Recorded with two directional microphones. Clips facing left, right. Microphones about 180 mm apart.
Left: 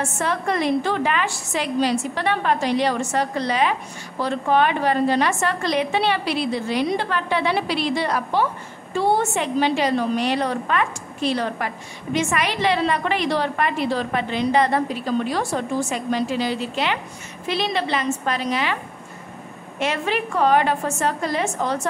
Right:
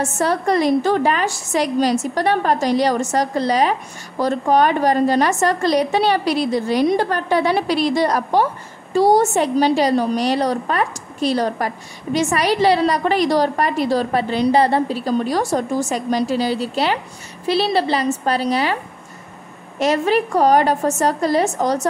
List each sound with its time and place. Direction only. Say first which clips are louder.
0.0 s a woman's voice: right 5 dB; 40° right (ahead or behind)
19.8 s a woman's voice: right 7 dB; 40° right (ahead or behind)